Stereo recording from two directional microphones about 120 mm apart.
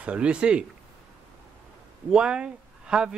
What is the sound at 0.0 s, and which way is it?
Speech, 10° right (ahead or behind).